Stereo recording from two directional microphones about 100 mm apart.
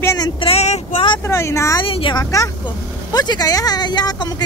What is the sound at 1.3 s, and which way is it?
Speech, 30° left (ahead or behind).